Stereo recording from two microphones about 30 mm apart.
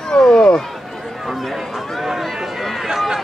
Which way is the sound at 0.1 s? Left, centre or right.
Left.